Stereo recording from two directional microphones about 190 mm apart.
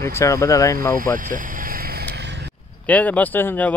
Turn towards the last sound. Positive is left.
turn(degrees=10)  # may be behind; listen again after turning